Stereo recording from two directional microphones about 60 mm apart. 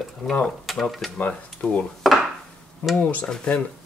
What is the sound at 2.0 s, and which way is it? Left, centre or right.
Dishes, centre.